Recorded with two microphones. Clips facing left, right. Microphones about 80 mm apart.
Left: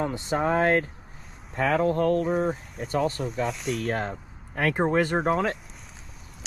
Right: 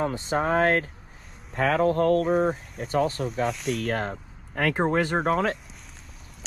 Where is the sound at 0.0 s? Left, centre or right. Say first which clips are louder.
Even; right.